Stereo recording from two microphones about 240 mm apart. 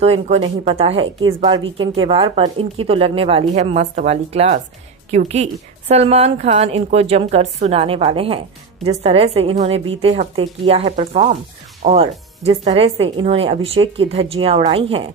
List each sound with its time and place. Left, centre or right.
0.0 s speech: right